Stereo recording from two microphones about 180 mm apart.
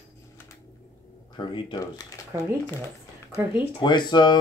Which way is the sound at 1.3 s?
25° left (ahead or behind).